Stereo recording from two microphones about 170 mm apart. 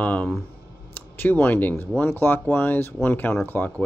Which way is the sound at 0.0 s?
10° left (ahead or behind).